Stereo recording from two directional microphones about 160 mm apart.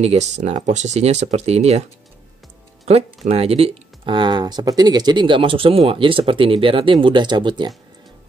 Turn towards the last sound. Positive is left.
turn(degrees=-30)  # may be behind; listen again after turning